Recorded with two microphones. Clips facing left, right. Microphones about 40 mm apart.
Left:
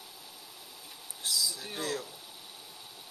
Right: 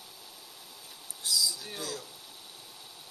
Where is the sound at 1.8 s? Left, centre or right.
Left.